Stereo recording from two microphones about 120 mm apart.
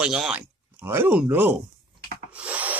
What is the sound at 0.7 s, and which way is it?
Speech, 15° right (ahead or behind).